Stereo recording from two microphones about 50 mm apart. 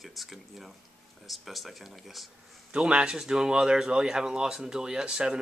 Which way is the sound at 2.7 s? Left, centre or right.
Right.